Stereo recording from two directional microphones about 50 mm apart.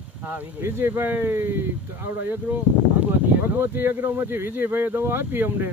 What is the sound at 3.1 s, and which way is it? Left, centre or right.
Speech, right.